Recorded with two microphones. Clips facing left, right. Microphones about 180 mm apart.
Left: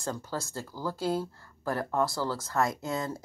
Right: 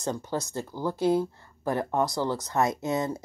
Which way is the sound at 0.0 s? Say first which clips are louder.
Right 4 dB; 20° right (ahead or behind).